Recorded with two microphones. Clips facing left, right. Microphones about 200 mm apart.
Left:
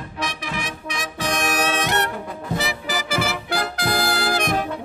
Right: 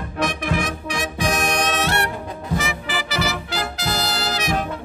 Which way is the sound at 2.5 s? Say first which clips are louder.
Right 1 dB; 35° left (ahead or behind).